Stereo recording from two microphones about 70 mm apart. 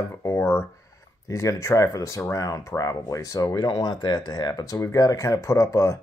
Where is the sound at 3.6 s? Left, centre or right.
Left.